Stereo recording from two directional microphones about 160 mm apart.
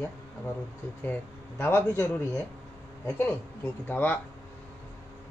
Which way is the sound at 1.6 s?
10° left (ahead or behind).